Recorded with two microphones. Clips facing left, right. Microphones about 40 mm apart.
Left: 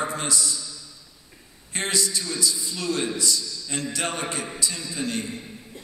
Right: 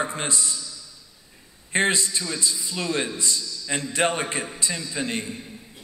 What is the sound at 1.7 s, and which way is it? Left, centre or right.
A man's voice, right.